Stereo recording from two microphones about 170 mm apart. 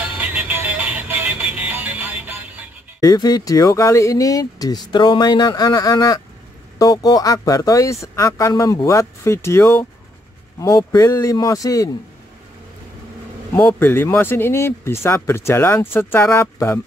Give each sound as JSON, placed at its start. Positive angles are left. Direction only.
{"t": 0.2, "sound": "music", "side_deg": -10}
{"t": 3.0, "sound": "speech", "side_deg": 20}
{"t": 13.5, "sound": "speech", "side_deg": 10}